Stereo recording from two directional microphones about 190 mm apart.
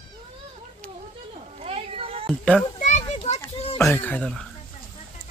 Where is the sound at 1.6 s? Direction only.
30° right (ahead or behind).